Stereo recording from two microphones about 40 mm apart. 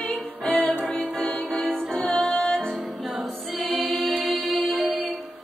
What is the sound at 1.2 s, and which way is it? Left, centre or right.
Music, centre.